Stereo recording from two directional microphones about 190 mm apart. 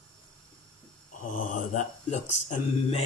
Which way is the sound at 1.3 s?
45° left (ahead or behind).